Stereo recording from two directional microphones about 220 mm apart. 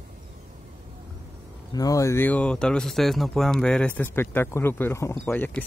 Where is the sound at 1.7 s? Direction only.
15° left (ahead or behind).